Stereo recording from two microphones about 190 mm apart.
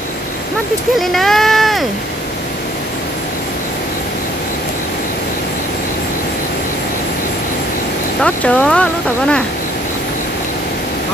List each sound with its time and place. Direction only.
0.9 s speech: centre (ahead or behind)
8.2 s speech: 5° left (ahead or behind)